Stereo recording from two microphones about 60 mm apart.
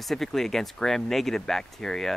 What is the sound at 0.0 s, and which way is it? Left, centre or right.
Speech, centre.